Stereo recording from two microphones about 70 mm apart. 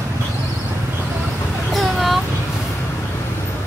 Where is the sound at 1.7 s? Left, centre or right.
Centre.